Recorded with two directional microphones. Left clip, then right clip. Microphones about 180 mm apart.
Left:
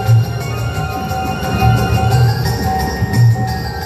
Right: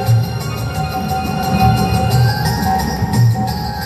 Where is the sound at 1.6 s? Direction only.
25° right (ahead or behind).